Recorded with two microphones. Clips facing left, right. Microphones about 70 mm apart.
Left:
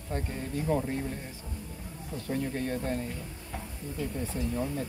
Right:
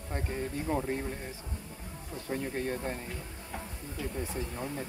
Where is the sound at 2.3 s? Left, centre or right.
Centre.